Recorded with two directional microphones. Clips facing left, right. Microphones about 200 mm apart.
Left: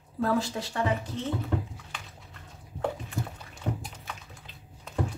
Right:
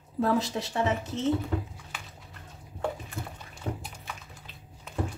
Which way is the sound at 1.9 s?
5° right (ahead or behind).